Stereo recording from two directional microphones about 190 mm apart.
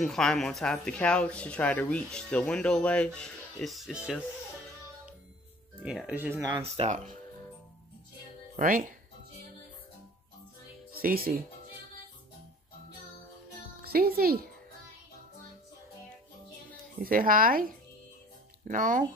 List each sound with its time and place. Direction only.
0.0 s speech: centre (ahead or behind)
5.8 s speech: 5° right (ahead or behind)
6.5 s speech: 35° right (ahead or behind)
8.5 s speech: 45° right (ahead or behind)
11.0 s speech: 50° right (ahead or behind)
13.8 s speech: 55° right (ahead or behind)
17.0 s speech: 45° right (ahead or behind)